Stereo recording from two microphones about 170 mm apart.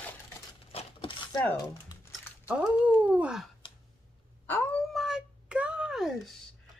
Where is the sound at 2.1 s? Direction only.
5° right (ahead or behind).